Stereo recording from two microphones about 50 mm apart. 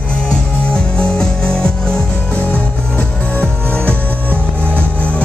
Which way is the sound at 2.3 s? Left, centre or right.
Left.